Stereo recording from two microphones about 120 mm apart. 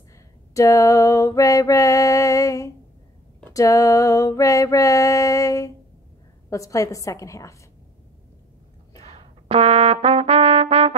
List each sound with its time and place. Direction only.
0.6 s mantra: 25° left (ahead or behind)
9.0 s trumpet: 60° right (ahead or behind)